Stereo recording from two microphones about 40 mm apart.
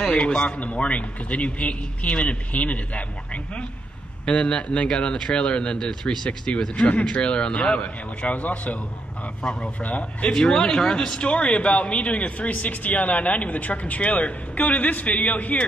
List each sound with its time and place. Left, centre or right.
0.1 s speech: left
0.6 s a man's voice: left
4.3 s a man's voice: left
9.4 s speech: centre
9.8 s a man's voice: left
10.3 s speech: centre
11.1 s a man's voice: left